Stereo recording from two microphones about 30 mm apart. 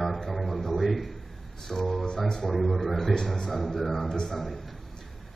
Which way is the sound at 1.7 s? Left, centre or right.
Centre.